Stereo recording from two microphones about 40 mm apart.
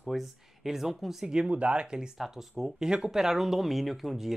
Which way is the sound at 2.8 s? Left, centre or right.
Centre.